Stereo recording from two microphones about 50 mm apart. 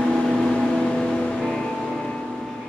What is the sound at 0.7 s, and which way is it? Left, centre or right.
Music, centre.